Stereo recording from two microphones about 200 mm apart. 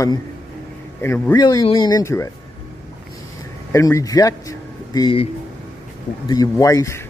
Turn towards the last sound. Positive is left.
turn(degrees=15)  # may be behind; listen again after turning